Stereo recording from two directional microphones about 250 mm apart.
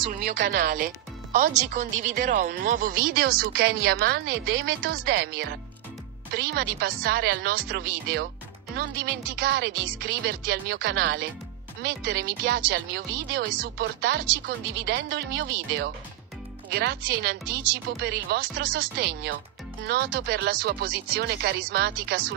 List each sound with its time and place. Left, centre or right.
0.1 s speech: right